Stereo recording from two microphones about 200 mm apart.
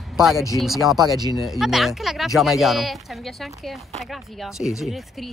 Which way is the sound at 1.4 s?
Centre (ahead or behind).